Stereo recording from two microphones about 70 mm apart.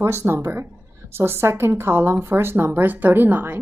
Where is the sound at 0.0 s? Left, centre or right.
Right.